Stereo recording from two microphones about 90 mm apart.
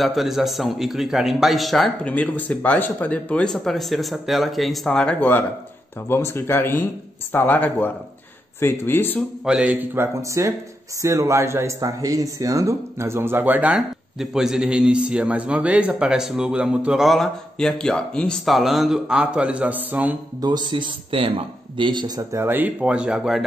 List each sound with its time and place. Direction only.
0.0 s a man's voice: centre (ahead or behind)
2.0 s speech: 15° left (ahead or behind)
3.5 s a man's voice: centre (ahead or behind)
6.0 s speech: 25° left (ahead or behind)
9.4 s a man's voice: 10° right (ahead or behind)
10.2 s speech: 35° right (ahead or behind); by 13.7 s 20° right (ahead or behind)
13.7 s a man's voice: 5° right (ahead or behind)
18.4 s a man's voice: centre (ahead or behind); by 20.2 s 20° right (ahead or behind)
20.3 s speech: 50° right (ahead or behind)
22.3 s a man's voice: 25° right (ahead or behind); by 23.4 s 5° right (ahead or behind)